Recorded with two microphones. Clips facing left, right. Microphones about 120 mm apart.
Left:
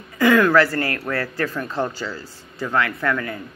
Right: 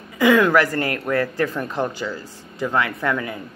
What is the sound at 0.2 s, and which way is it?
Speech, 15° right (ahead or behind).